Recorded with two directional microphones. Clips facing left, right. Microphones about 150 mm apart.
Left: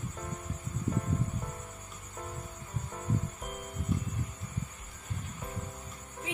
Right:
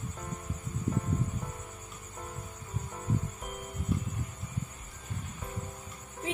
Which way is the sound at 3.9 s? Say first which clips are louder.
Right 1 dB; centre (ahead or behind).